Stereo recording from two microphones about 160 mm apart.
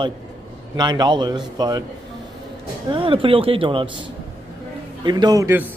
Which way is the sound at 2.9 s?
35° right (ahead or behind).